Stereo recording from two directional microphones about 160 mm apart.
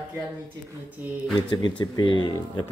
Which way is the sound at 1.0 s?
10° right (ahead or behind).